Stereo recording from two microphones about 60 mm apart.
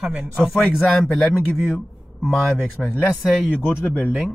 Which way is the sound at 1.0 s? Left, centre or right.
Left.